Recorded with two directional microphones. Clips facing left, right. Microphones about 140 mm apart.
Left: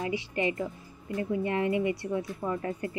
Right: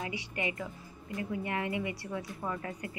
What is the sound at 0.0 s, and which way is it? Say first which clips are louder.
Speech: left 7 dB; 25° left (ahead or behind).